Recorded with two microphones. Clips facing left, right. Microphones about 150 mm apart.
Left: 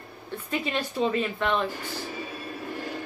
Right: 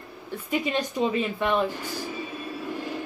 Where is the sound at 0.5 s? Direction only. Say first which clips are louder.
Right 3 dB; 15° right (ahead or behind).